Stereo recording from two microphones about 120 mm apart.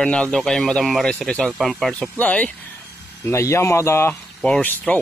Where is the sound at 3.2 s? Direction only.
20° left (ahead or behind).